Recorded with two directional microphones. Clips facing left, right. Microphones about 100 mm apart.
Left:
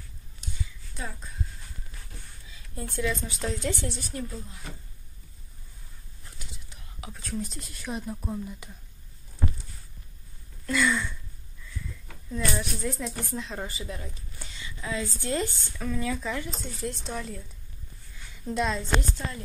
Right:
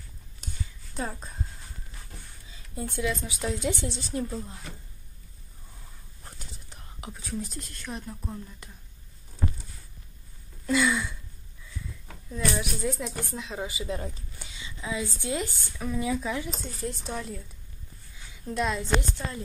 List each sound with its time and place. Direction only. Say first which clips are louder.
2.7 s a woman's voice: even; 15° right (ahead or behind)
7.1 s a woman's voice: left 1 dB; 5° right (ahead or behind)
7.8 s speech: left 5 dB; 15° left (ahead or behind)
10.7 s a woman's voice: right 1 dB; 15° right (ahead or behind)
12.3 s a woman's voice: even; 5° right (ahead or behind)
18.4 s a woman's voice: left 1 dB; centre (ahead or behind)
18.8 s a woman's voice: right 1 dB; 15° right (ahead or behind)